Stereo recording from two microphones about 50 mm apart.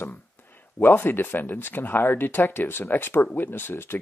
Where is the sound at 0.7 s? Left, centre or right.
Left.